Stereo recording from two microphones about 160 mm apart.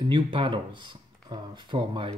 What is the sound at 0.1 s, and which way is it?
Speech, 30° right (ahead or behind).